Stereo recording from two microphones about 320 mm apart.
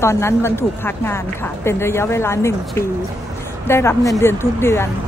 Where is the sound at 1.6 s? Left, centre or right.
Centre.